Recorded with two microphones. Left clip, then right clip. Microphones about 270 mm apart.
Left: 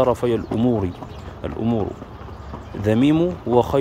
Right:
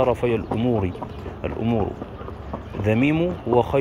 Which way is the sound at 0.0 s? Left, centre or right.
Left.